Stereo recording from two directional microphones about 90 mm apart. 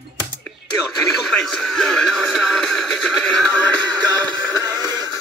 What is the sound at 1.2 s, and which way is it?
Music, 5° left (ahead or behind).